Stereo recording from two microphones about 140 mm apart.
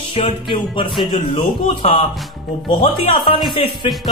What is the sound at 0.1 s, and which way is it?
Speech, 35° left (ahead or behind).